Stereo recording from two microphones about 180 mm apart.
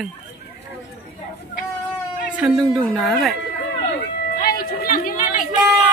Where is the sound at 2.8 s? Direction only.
5° left (ahead or behind).